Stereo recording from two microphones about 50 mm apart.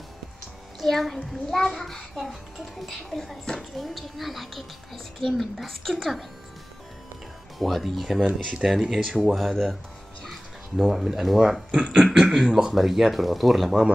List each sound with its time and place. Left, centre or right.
0.7 s speech: centre
7.5 s speech: centre
8.3 s speech: right
8.9 s speech: centre
10.2 s music: centre
10.9 s speech: centre